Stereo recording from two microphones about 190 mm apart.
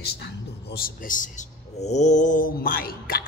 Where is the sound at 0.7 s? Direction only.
50° left (ahead or behind).